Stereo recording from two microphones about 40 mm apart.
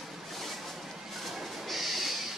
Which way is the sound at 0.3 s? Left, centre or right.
Centre.